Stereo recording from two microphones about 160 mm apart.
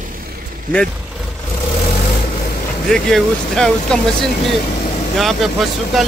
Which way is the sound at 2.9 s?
5° left (ahead or behind).